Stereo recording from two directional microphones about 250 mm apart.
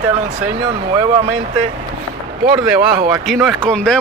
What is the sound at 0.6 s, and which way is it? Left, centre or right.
Speech, centre.